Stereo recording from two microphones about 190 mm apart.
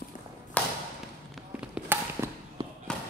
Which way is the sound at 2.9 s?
5° left (ahead or behind).